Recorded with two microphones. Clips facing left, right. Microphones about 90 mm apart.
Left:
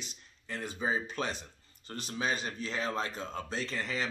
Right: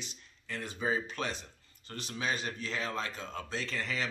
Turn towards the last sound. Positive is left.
turn(degrees=30)  # may be behind; listen again after turning